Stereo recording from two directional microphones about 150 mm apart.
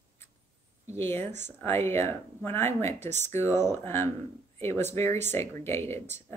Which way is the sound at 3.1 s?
50° right (ahead or behind).